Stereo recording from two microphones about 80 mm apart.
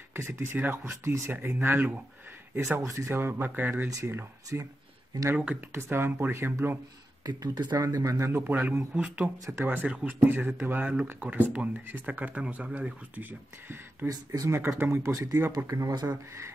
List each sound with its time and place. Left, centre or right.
0.1 s speech: right
2.8 s speech: right
5.3 s speech: centre
5.7 s speech: right
7.2 s speech: right
7.8 s speech: right
8.4 s speech: centre
14.0 s speech: right
14.8 s speech: right
15.9 s speech: right